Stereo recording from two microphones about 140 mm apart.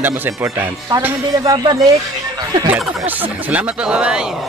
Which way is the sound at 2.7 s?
10° right (ahead or behind).